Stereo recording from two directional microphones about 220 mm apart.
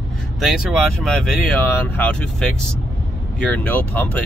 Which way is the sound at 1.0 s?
Centre (ahead or behind).